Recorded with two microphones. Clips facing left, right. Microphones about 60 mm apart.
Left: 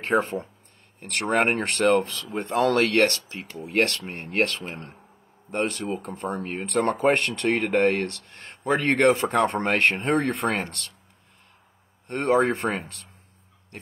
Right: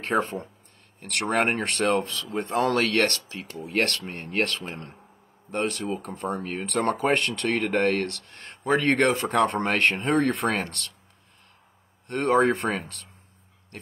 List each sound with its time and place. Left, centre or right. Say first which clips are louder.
0.0 s speech: left 2 dB; left
12.1 s speech: even; left